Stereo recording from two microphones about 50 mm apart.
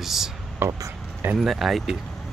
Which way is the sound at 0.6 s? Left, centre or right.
Right.